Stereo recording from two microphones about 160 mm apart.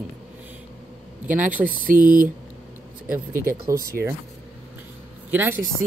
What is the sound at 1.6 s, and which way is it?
Speech, 60° right (ahead or behind).